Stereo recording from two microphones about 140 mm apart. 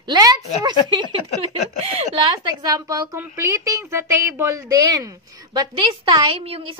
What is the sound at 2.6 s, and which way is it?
A woman's voice, 25° right (ahead or behind).